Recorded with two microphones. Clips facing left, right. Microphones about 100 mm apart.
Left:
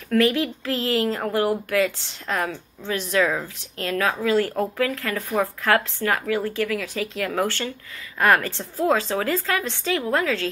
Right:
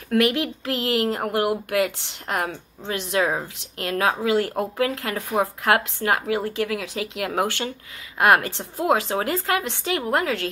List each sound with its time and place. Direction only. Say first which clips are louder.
0.1 s speech: left 1 dB; 20° right (ahead or behind)